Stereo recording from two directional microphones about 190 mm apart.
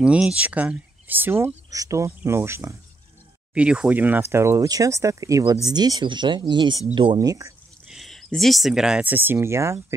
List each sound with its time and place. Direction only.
0.0 s speech: 5° right (ahead or behind)
7.9 s speech: centre (ahead or behind); by 9.9 s 15° right (ahead or behind)